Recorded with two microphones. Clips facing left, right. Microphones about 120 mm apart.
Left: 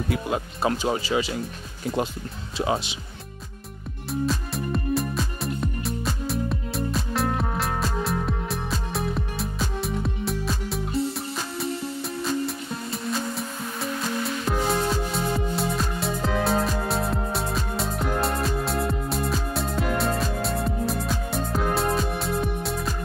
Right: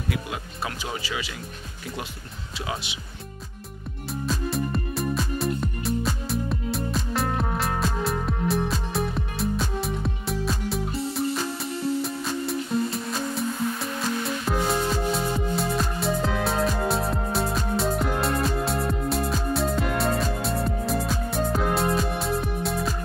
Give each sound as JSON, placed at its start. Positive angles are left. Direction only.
{"t": 0.1, "sound": "speech", "side_deg": 30}
{"t": 2.5, "sound": "speech", "side_deg": 35}
{"t": 4.1, "sound": "music", "side_deg": 0}